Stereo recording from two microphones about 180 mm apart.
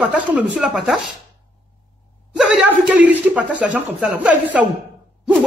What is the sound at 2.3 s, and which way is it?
A man's voice, 10° right (ahead or behind).